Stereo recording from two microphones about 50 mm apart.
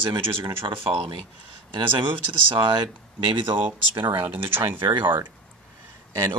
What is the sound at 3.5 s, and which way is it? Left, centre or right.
Speech, right.